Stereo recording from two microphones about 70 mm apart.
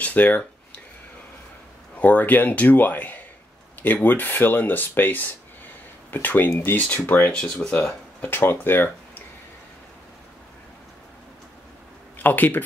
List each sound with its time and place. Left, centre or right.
0.0 s a sound: left
2.0 s speech: left
12.2 s speech: left